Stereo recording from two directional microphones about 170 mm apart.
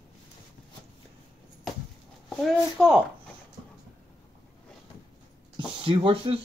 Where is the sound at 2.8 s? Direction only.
Centre (ahead or behind).